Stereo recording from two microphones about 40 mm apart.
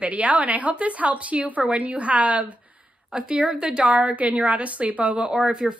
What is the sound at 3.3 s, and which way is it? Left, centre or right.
A woman's voice, right.